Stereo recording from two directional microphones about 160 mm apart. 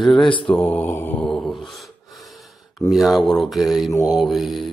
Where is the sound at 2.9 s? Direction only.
Centre (ahead or behind).